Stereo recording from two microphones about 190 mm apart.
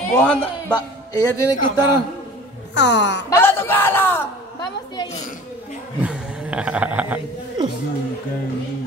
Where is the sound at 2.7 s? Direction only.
65° left (ahead or behind).